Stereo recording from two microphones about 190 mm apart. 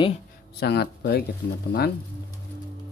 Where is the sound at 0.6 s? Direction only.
60° left (ahead or behind).